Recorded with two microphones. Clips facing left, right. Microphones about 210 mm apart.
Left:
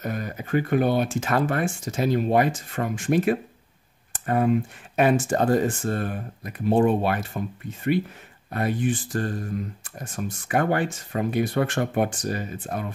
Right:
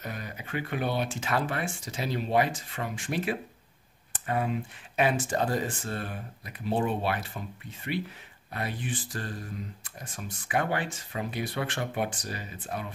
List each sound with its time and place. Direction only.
0.0 s speech: 45° left (ahead or behind)